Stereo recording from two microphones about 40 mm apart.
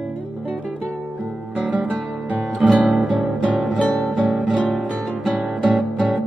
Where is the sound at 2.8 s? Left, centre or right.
Centre.